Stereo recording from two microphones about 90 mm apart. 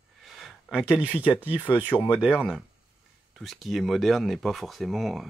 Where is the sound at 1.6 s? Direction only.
20° left (ahead or behind).